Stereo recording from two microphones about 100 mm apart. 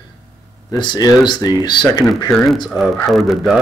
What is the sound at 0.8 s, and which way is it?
Speech, 50° left (ahead or behind).